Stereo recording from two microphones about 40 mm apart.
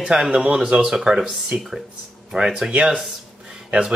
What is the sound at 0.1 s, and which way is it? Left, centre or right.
Speech, right.